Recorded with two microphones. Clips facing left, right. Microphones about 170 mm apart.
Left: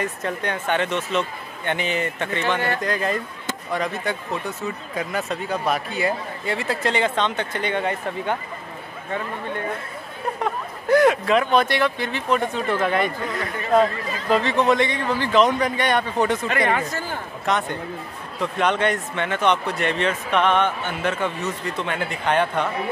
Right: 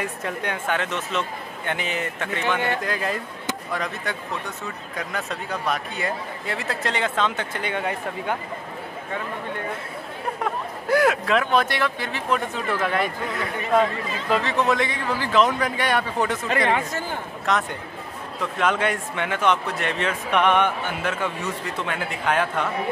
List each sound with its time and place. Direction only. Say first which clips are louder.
0.0 s speech: left 2 dB; 10° right (ahead or behind)
10.4 s speech: left 1 dB; 5° right (ahead or behind)
16.7 s speech: even; 20° right (ahead or behind)
17.5 s speech: left 1 dB; centre (ahead or behind)